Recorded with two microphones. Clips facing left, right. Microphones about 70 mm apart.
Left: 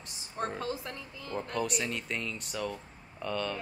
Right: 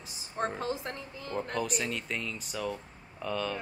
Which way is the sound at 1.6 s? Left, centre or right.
Centre.